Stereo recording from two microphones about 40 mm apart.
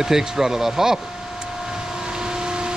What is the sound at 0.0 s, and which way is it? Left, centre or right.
Speech, centre.